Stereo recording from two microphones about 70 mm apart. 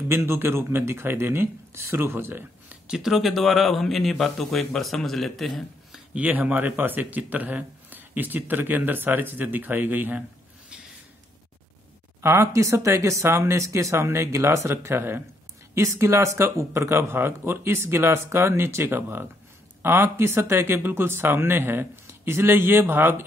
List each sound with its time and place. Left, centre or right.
0.1 s speech: right
2.9 s speech: centre
6.1 s speech: right
12.2 s speech: right